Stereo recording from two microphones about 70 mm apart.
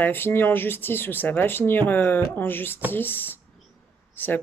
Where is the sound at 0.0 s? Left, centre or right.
Left.